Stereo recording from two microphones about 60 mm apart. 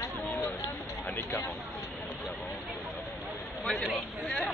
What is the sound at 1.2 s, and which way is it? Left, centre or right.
Speech, left.